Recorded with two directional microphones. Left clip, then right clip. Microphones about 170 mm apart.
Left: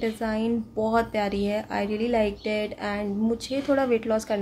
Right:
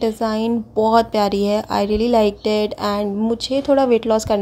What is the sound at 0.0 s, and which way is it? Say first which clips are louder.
A woman's voice: right 8 dB; 35° right (ahead or behind).